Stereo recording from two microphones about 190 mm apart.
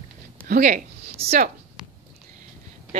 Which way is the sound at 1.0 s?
35° right (ahead or behind).